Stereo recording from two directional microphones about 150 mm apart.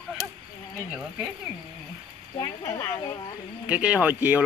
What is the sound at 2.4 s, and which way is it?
Speech, 20° left (ahead or behind).